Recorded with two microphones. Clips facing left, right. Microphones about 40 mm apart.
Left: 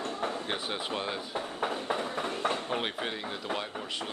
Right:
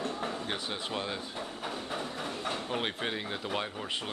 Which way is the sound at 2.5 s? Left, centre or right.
Centre.